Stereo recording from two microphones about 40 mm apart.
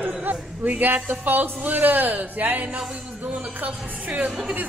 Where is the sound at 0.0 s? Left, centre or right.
Right.